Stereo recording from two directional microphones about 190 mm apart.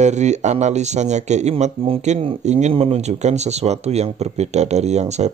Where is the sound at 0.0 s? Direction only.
40° right (ahead or behind).